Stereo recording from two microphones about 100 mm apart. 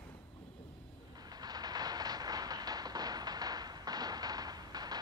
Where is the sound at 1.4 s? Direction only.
40° right (ahead or behind).